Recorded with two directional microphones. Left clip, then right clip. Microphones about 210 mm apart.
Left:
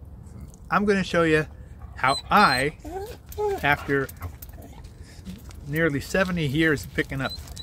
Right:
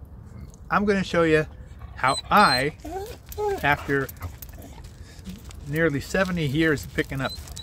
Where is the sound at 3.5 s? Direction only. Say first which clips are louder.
Even; 5° right (ahead or behind).